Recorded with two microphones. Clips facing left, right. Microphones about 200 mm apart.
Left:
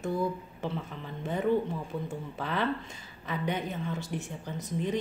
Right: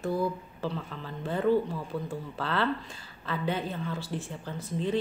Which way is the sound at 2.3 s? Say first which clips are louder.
Right 1 dB; 15° left (ahead or behind).